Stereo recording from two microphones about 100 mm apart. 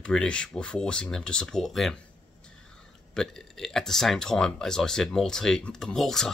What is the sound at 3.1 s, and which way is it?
Speech, 5° left (ahead or behind).